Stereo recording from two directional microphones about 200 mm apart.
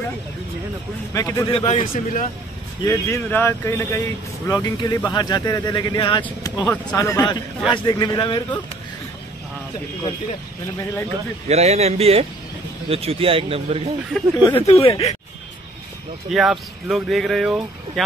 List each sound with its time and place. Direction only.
1.1 s speech: 15° left (ahead or behind)
1.5 s a man's voice: 30° left (ahead or behind)
2.8 s speech: 15° left (ahead or behind)
6.2 s speech: 10° left (ahead or behind)
11.4 s a man's voice: 35° right (ahead or behind)
14.3 s speech: 20° left (ahead or behind)
14.7 s a man's voice: 30° left (ahead or behind)
16.3 s speech: centre (ahead or behind)